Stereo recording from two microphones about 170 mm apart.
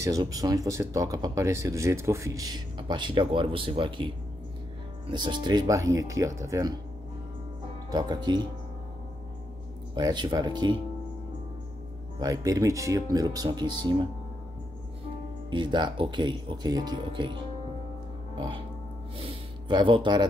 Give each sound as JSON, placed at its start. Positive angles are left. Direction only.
{"t": 0.0, "sound": "speech", "side_deg": -20}
{"t": 7.9, "sound": "speech", "side_deg": -25}
{"t": 9.9, "sound": "speech", "side_deg": -25}
{"t": 12.2, "sound": "speech", "side_deg": -20}
{"t": 15.5, "sound": "speech", "side_deg": -25}
{"t": 19.1, "sound": "speech", "side_deg": -30}